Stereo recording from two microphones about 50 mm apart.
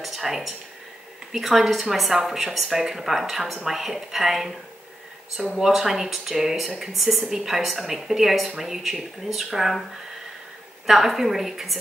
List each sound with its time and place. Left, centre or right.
0.0 s speech: centre
5.4 s a woman's voice: centre
5.7 s speech: centre
10.9 s speech: centre